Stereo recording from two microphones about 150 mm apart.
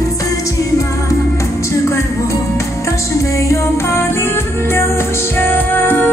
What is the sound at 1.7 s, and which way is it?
Music, 20° left (ahead or behind).